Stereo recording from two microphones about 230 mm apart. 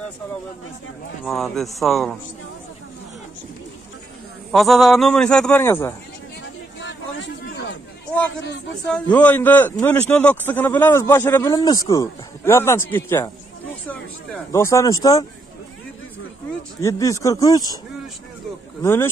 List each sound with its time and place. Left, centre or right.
1.2 s a man's voice: centre
4.5 s a man's voice: centre
6.8 s a sound: left
8.8 s a man's voice: centre
14.5 s a man's voice: centre
16.8 s a man's voice: centre
18.8 s a man's voice: centre